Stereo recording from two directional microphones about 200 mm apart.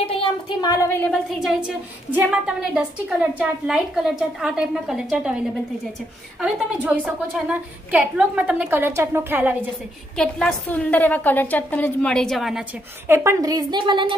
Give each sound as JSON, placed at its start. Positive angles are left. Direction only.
{"t": 0.0, "sound": "a woman's voice", "side_deg": 25}
{"t": 6.4, "sound": "a woman's voice", "side_deg": -5}
{"t": 10.1, "sound": "a woman's voice", "side_deg": 5}
{"t": 13.1, "sound": "a woman's voice", "side_deg": -15}